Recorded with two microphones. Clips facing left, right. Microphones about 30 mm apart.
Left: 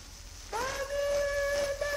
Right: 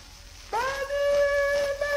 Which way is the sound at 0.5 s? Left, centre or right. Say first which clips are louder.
Right 6 dB; right.